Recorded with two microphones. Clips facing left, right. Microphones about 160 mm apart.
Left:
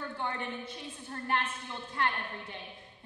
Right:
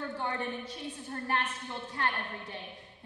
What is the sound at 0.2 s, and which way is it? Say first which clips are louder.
A woman's voice: even; 35° right (ahead or behind).